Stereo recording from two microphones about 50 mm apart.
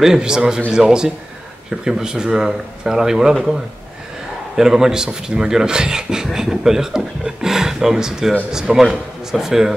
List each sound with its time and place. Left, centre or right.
0.0 s speech: centre
4.6 s speech: centre